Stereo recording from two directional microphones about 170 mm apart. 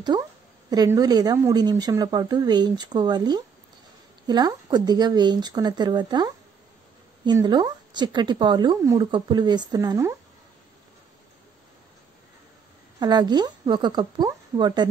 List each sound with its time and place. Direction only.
0.1 s a woman's voice: 25° right (ahead or behind)
13.0 s a woman's voice: 25° right (ahead or behind)